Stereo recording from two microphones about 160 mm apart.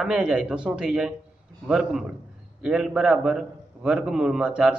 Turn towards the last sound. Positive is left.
turn(degrees=-5)  # may be behind; listen again after turning